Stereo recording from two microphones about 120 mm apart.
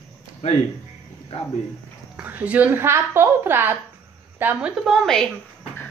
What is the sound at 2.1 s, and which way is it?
A woman's voice, 15° right (ahead or behind).